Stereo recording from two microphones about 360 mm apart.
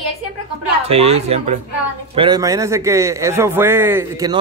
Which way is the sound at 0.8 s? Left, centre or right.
Centre.